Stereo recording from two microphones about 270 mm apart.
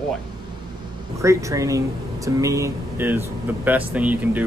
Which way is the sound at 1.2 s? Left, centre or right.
Centre.